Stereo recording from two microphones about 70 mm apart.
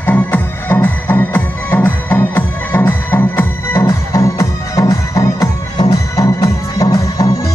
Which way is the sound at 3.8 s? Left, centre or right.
Left.